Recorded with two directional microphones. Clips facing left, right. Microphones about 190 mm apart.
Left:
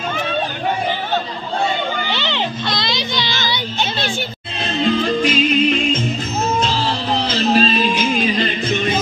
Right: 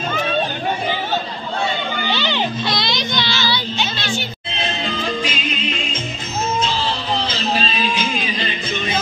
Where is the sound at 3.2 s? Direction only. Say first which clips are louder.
Right 1 dB; 15° left (ahead or behind).